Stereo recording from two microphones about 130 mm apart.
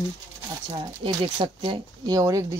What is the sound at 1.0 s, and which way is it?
Speech, 40° right (ahead or behind).